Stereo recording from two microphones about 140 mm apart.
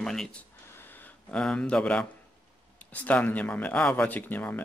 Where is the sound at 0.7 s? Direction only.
15° left (ahead or behind).